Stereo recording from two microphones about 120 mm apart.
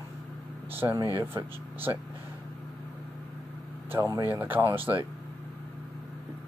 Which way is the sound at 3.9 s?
20° right (ahead or behind).